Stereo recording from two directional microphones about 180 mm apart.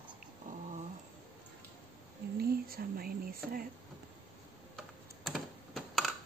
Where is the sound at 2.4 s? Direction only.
55° right (ahead or behind).